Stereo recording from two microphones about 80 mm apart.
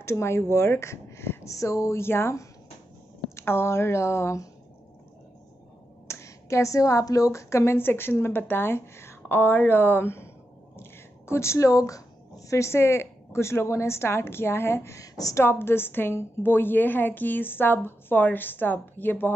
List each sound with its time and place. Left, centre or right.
0.0 s speech: left
6.0 s a woman's voice: left
15.4 s a woman's voice: left